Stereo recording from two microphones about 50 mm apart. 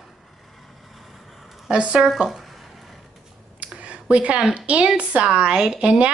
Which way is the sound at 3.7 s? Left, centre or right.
Right.